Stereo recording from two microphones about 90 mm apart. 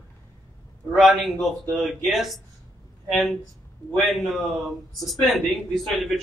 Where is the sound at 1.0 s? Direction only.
Centre (ahead or behind).